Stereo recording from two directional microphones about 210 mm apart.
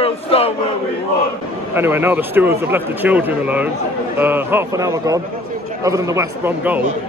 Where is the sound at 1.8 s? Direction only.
10° right (ahead or behind).